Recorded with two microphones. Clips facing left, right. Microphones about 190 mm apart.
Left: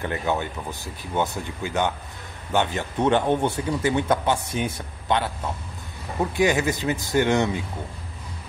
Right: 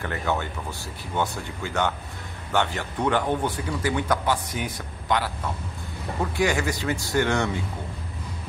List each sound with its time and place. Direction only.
0.0 s speech: 20° left (ahead or behind)
6.3 s speech: 20° left (ahead or behind)